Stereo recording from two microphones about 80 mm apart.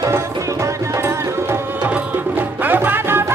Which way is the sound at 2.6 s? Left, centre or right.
Right.